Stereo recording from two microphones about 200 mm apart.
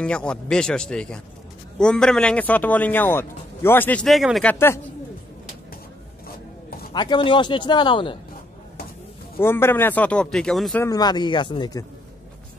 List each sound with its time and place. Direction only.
0.0 s a man's voice: 5° left (ahead or behind)
6.9 s a man's voice: 20° left (ahead or behind)
9.4 s a man's voice: 10° left (ahead or behind)
10.8 s a man's voice: 20° left (ahead or behind)